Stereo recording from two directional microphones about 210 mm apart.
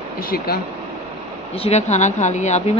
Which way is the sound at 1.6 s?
30° left (ahead or behind).